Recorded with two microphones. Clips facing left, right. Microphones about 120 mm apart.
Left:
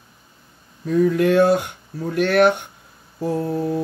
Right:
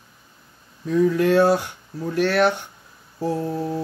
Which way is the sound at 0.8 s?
50° left (ahead or behind).